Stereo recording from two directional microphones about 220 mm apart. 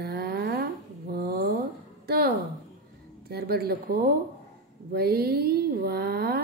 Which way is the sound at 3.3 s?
45° right (ahead or behind).